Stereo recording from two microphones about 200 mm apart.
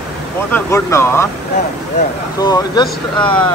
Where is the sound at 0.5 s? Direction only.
10° left (ahead or behind).